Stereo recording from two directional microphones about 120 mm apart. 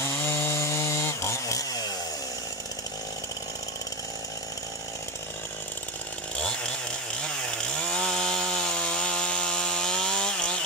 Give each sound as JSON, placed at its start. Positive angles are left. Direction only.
{"t": 0.2, "sound": "chainsaw", "side_deg": 20}
{"t": 7.5, "sound": "chainsaw", "side_deg": 5}